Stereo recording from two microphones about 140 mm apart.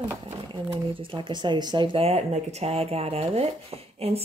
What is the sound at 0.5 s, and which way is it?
Speech, 35° right (ahead or behind).